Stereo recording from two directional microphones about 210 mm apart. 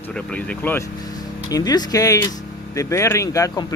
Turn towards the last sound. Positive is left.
turn(degrees=15)  # may be behind; listen again after turning